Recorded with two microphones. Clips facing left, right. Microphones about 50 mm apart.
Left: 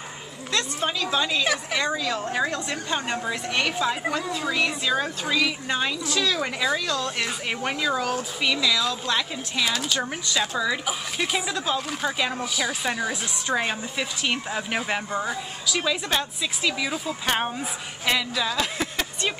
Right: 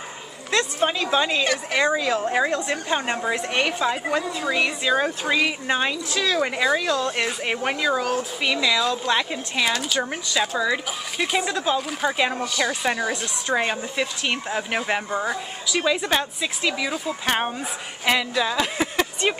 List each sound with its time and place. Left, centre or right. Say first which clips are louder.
0.5 s a sound: right 5 dB; right
0.8 s speech: right 2 dB; right
1.4 s speech: right 2 dB; centre
1.8 s a woman's voice: right 5 dB; right
4.9 s a woman's voice: right 3 dB; right
9.7 s speech: right 2 dB; centre
12.8 s a woman's voice: right 3 dB; centre